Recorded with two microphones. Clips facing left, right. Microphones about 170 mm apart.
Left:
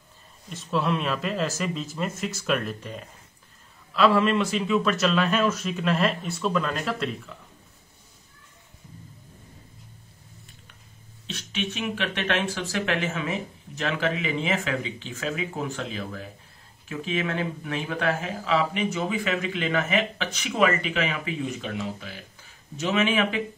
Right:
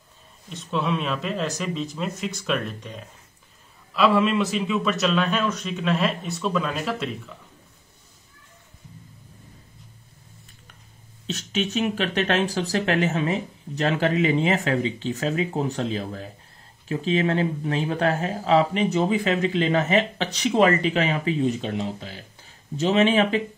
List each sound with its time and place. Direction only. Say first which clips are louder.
0.5 s a man's voice: even; centre (ahead or behind)
11.2 s speech: right 5 dB; 40° right (ahead or behind)